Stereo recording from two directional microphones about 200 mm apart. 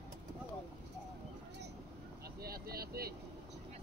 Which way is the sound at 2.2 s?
50° right (ahead or behind).